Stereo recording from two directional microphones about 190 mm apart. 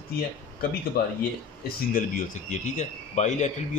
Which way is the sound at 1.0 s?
55° left (ahead or behind).